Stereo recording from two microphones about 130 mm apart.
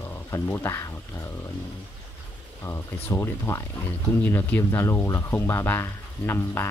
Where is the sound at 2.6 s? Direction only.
20° left (ahead or behind).